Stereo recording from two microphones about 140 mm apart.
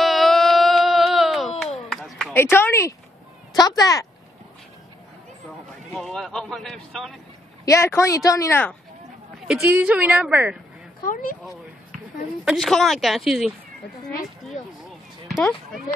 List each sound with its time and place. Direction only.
0.0 s a sound: centre (ahead or behind)
2.3 s speech: 15° left (ahead or behind)
5.9 s a man's voice: centre (ahead or behind)
7.6 s speech: 20° left (ahead or behind)
9.7 s a woman's voice: 10° right (ahead or behind)
11.1 s speech: 75° left (ahead or behind)
12.4 s a man's voice: centre (ahead or behind)
14.8 s a sound: centre (ahead or behind)